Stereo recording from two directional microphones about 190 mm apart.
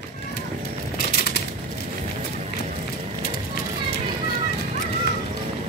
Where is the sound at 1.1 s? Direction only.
55° left (ahead or behind).